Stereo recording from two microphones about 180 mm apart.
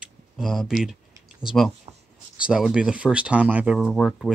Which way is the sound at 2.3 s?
5° right (ahead or behind).